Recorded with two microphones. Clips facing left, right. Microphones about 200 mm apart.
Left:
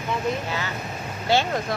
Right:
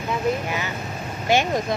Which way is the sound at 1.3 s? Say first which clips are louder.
Right 2 dB; 15° right (ahead or behind).